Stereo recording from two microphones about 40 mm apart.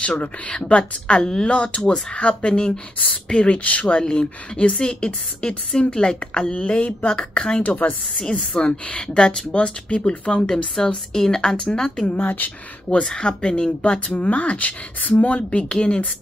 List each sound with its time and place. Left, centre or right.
0.7 s speech: left
1.6 s speech: left
4.0 s speech: left
7.6 s a woman's voice: left
8.2 s a woman's voice: left
12.2 s a woman's voice: left
13.0 s speech: centre
13.9 s speech: left